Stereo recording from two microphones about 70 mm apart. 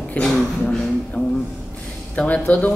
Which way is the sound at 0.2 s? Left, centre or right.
Centre.